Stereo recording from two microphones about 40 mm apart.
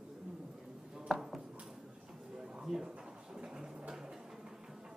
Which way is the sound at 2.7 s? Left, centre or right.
Centre.